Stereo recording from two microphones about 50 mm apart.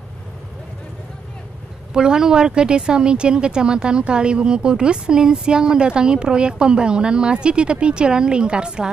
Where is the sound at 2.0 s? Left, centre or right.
Centre.